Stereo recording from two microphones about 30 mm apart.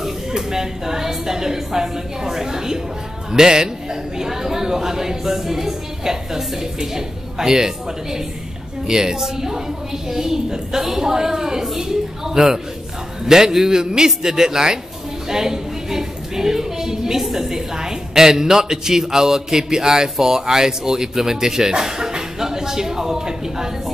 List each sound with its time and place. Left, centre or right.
0.3 s a woman's voice: centre